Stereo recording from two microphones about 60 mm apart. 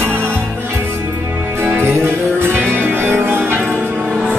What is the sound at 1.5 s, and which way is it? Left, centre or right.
Music, right.